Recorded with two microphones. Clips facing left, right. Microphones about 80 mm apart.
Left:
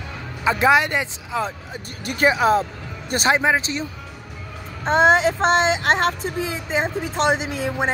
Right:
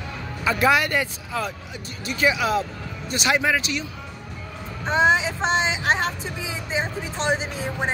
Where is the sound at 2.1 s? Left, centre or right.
Left.